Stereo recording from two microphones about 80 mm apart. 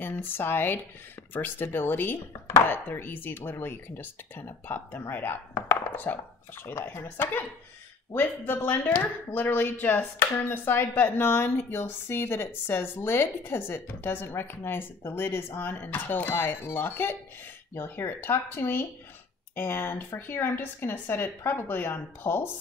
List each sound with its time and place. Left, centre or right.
0.0 s a woman's voice: left